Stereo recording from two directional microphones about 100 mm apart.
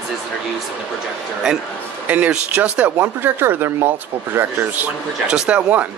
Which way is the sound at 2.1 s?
15° right (ahead or behind).